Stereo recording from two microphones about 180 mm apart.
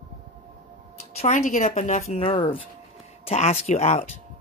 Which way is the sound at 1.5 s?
45° left (ahead or behind).